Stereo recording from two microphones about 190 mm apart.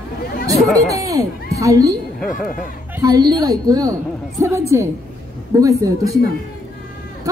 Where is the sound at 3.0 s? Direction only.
20° right (ahead or behind).